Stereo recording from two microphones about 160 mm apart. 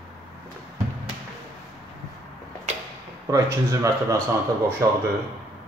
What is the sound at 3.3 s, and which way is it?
Speech, 20° right (ahead or behind).